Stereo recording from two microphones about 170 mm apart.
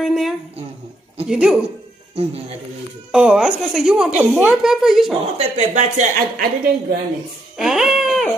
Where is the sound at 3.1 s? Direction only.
5° right (ahead or behind).